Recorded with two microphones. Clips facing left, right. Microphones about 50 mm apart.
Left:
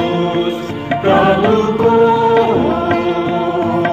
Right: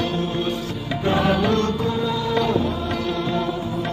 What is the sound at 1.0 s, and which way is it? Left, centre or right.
Music, left.